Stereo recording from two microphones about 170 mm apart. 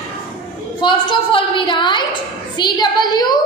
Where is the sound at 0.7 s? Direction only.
30° left (ahead or behind).